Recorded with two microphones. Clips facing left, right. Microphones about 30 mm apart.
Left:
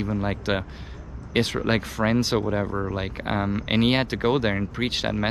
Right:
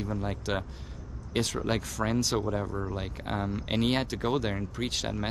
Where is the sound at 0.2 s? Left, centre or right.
Left.